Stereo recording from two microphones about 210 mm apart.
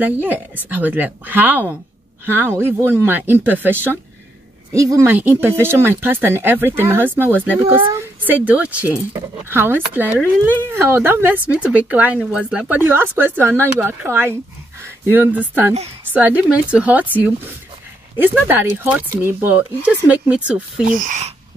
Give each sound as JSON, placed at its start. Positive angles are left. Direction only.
{"t": 0.0, "sound": "speech", "side_deg": -10}
{"t": 4.7, "sound": "speech", "side_deg": -15}
{"t": 18.1, "sound": "speech", "side_deg": -10}
{"t": 20.9, "sound": "speech", "side_deg": -35}